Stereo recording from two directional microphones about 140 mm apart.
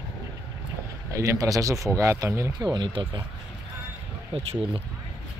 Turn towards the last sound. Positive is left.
turn(degrees=-45)  # may be behind; listen again after turning